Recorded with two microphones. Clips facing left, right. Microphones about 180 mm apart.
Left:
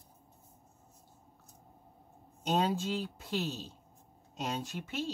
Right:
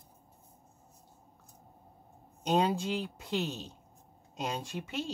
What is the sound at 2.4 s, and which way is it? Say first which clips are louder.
Speech: right 2 dB; 15° right (ahead or behind).